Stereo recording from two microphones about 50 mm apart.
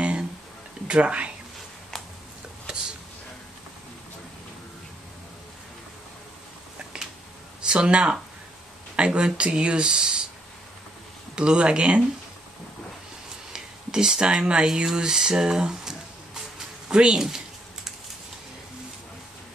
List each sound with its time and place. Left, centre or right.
0.0 s a sound: right
0.8 s speech: right
7.6 s speech: right
11.3 s speech: centre
13.5 s speech: centre
14.9 s a sound: centre